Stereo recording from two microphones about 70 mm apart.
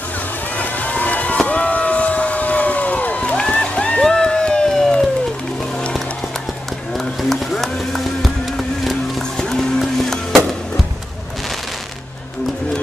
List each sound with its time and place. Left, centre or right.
0.6 s run: left
1.4 s a sound: left
6.9 s music: centre
9.4 s vehicle: centre